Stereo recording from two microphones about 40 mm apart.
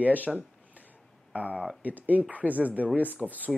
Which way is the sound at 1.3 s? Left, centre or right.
Right.